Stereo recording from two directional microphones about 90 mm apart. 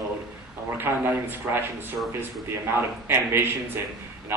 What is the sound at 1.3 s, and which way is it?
Speech, 25° right (ahead or behind).